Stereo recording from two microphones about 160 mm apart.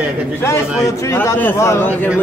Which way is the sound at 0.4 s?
20° left (ahead or behind).